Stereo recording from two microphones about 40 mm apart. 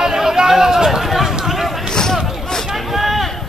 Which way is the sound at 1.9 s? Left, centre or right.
Centre.